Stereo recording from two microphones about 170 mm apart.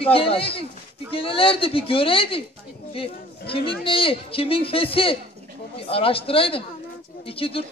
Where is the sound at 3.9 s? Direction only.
30° left (ahead or behind).